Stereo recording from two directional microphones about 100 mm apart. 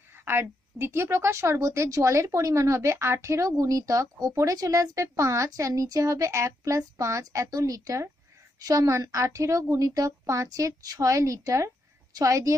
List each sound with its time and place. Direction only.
0.2 s a woman's voice: 25° right (ahead or behind)